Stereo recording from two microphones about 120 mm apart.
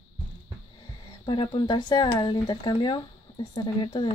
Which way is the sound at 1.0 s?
40° left (ahead or behind).